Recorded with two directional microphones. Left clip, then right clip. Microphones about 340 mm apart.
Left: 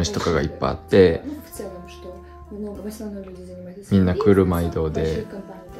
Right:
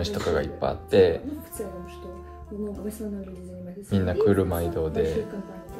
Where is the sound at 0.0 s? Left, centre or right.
Left.